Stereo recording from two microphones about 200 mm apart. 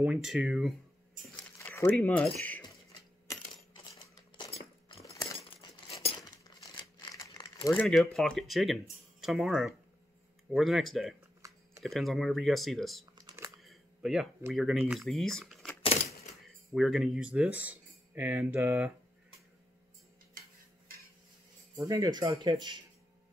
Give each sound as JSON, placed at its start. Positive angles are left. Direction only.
{"t": 0.0, "sound": "speech", "side_deg": -5}
{"t": 1.3, "sound": "speech", "side_deg": 10}
{"t": 3.3, "sound": "coin", "side_deg": 15}
{"t": 6.4, "sound": "crumpling", "side_deg": 20}
{"t": 7.7, "sound": "speech", "side_deg": 0}
{"t": 11.4, "sound": "computer keyboard", "side_deg": -15}
{"t": 11.8, "sound": "speech", "side_deg": 0}
{"t": 13.1, "sound": "computer keyboard", "side_deg": -20}
{"t": 13.6, "sound": "camera", "side_deg": 0}
{"t": 14.5, "sound": "speech", "side_deg": 0}
{"t": 21.7, "sound": "speech", "side_deg": -15}